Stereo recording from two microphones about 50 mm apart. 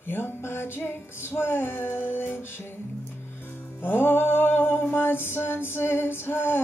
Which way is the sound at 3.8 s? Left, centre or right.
Left.